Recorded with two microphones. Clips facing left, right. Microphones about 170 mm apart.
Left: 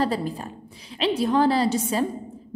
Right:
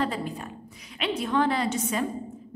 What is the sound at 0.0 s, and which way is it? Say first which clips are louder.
A woman's voice: left 4 dB; 35° left (ahead or behind).